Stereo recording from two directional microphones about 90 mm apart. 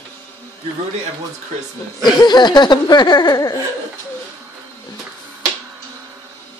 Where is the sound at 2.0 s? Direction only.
55° left (ahead or behind).